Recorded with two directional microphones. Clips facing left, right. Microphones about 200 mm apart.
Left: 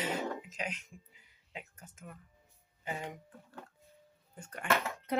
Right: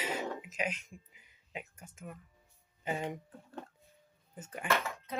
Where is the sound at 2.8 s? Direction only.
20° right (ahead or behind).